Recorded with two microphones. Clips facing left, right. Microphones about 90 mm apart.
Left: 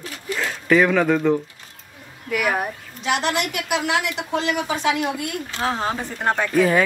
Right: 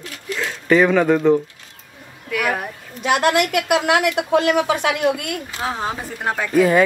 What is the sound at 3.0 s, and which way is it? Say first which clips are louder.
A woman's voice: right 5 dB; 55° right (ahead or behind).